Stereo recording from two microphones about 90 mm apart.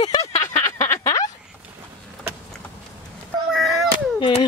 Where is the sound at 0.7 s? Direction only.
30° left (ahead or behind).